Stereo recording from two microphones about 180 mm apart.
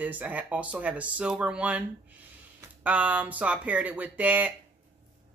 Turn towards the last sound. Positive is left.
turn(degrees=-10)  # may be behind; listen again after turning